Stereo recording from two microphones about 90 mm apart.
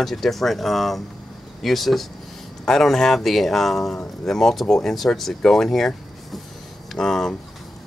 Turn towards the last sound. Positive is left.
turn(degrees=5)  # may be behind; listen again after turning